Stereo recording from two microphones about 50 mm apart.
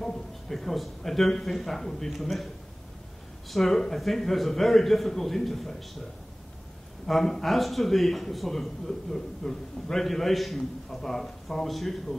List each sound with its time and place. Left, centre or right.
0.0 s a man's voice: centre
3.4 s a man's voice: centre
7.1 s a man's voice: centre